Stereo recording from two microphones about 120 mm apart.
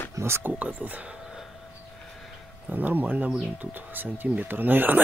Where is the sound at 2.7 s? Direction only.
15° right (ahead or behind).